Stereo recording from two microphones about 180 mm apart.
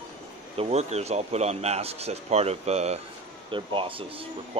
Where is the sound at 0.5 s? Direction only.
35° right (ahead or behind).